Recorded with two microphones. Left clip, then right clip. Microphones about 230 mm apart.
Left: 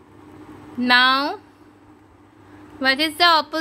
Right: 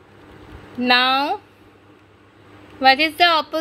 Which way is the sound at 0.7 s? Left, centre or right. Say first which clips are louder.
Even; centre.